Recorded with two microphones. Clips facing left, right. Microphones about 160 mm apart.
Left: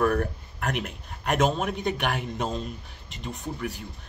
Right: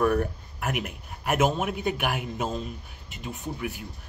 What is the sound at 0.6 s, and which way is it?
A man's voice, 5° right (ahead or behind).